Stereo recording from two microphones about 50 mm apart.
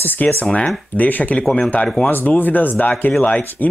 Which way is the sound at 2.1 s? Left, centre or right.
Left.